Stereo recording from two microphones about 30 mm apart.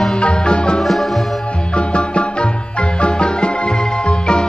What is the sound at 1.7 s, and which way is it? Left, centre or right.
Music, left.